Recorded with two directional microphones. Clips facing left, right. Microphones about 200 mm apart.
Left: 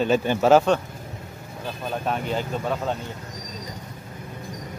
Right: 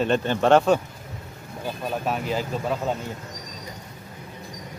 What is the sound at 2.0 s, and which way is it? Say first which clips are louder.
Speech: left 1 dB; centre (ahead or behind).